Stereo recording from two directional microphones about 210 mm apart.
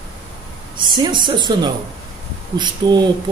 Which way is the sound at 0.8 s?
20° right (ahead or behind).